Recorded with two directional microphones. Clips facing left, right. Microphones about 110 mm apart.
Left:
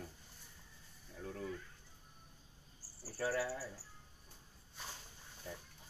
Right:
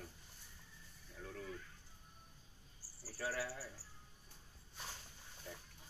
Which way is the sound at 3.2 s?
50° left (ahead or behind).